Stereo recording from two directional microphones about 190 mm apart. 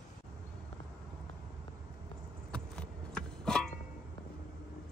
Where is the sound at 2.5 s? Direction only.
5° left (ahead or behind).